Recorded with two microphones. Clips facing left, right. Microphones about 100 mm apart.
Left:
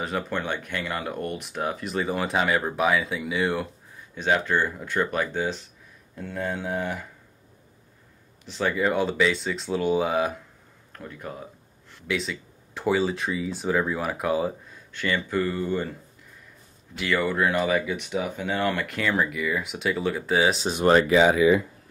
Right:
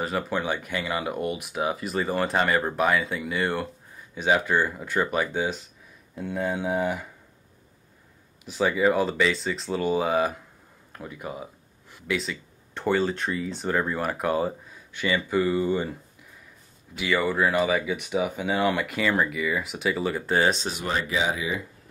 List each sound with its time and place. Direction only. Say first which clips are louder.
0.0 s speech: right 1 dB; centre (ahead or behind)
8.5 s speech: right 2 dB; 5° right (ahead or behind)
16.9 s speech: even; 5° right (ahead or behind)
20.8 s speech: left 10 dB; 60° left (ahead or behind)